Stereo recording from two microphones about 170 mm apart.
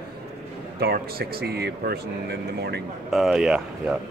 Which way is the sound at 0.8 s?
60° right (ahead or behind).